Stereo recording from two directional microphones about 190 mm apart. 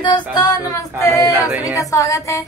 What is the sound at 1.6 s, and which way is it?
Speech, 20° left (ahead or behind).